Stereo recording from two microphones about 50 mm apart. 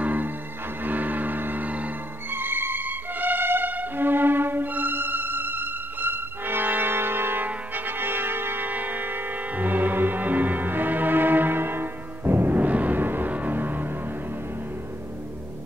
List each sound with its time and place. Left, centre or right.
0.0 s music: right
2.3 s music: right
7.4 s brass instrument: right
12.5 s music: right